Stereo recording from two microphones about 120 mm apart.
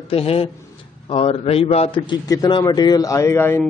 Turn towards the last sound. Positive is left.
turn(degrees=20)  # may be behind; listen again after turning